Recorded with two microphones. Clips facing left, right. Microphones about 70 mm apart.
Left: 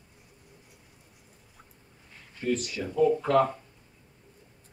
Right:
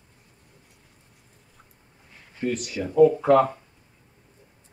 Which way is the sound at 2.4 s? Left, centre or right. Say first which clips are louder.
Right 2 dB; centre.